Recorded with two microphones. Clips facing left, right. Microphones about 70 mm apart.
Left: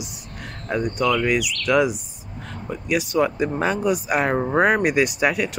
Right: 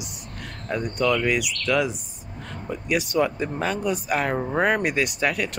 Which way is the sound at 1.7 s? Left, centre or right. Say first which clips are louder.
Left 4 dB; centre.